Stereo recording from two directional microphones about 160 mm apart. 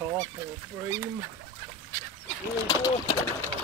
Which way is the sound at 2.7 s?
30° left (ahead or behind).